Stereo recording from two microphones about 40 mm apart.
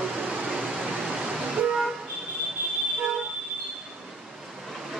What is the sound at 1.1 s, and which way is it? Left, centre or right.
Vehicle, centre.